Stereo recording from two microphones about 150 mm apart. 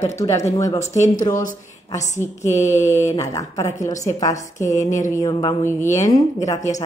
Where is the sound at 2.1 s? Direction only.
20° left (ahead or behind).